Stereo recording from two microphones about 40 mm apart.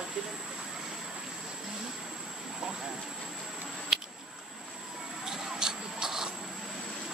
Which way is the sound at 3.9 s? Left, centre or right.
Centre.